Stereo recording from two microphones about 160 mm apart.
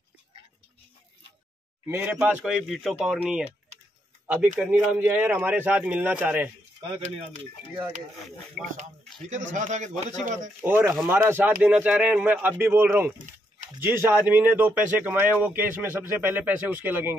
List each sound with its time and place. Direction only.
1.9 s speech: 15° right (ahead or behind)
4.6 s speech: 5° right (ahead or behind)
8.6 s speech: centre (ahead or behind)
9.3 s a man's voice: 50° right (ahead or behind)
10.6 s speech: 15° right (ahead or behind)
13.2 s a sound: 55° right (ahead or behind)
13.8 s speech: 15° right (ahead or behind)